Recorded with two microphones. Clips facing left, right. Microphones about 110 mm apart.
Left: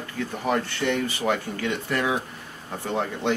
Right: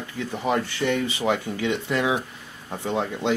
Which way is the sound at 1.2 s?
15° right (ahead or behind).